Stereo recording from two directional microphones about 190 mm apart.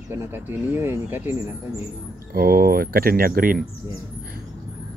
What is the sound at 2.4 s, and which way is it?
Speech, 50° right (ahead or behind).